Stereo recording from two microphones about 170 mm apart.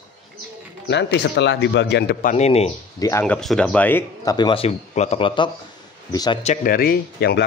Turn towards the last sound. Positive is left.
turn(degrees=70)  # may be behind; listen again after turning